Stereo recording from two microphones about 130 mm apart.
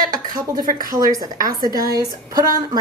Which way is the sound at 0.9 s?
30° right (ahead or behind).